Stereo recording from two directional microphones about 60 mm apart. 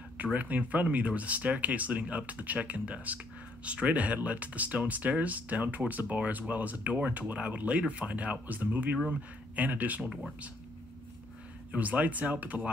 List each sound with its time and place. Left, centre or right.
0.2 s speech: right
11.7 s speech: right